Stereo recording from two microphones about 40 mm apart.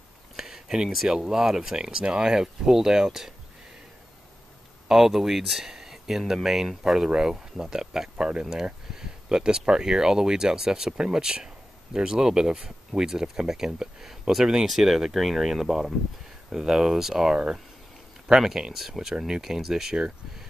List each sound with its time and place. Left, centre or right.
0.4 s a sound: centre
1.0 s speech: centre
4.8 s speech: centre
16.4 s speech: centre